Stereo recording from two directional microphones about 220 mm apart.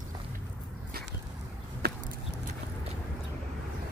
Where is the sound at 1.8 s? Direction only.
45° right (ahead or behind).